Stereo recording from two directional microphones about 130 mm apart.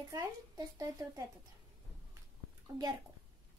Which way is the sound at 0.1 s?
25° right (ahead or behind).